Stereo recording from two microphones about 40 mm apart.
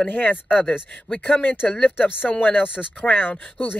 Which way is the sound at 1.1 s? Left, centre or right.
Left.